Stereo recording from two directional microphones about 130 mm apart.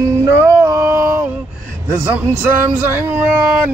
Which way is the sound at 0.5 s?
25° right (ahead or behind).